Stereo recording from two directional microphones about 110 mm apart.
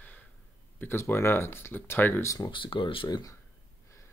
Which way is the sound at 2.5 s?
50° left (ahead or behind).